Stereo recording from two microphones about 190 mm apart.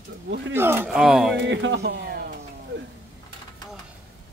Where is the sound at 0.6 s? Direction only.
10° right (ahead or behind).